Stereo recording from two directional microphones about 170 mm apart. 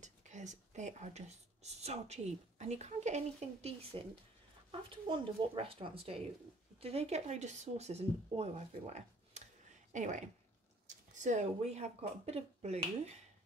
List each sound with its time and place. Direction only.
0.0 s speech: 45° right (ahead or behind)